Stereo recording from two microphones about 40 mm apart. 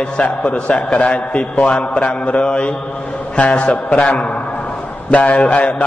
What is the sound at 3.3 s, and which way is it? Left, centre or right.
Mantra, left.